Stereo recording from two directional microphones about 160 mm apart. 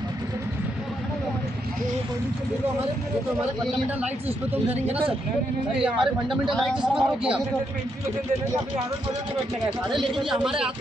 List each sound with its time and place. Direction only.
5.8 s speech: 5° right (ahead or behind)